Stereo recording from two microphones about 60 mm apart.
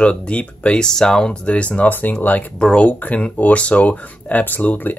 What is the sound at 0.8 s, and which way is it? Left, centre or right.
Speech, centre.